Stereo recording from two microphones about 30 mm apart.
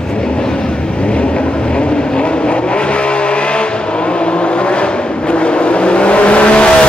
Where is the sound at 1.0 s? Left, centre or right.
Left.